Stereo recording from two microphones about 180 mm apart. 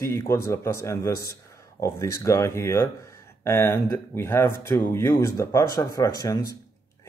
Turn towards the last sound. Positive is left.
turn(degrees=20)  # may be behind; listen again after turning